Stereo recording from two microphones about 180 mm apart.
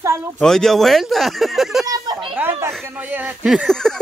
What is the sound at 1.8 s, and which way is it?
Speech, 20° right (ahead or behind).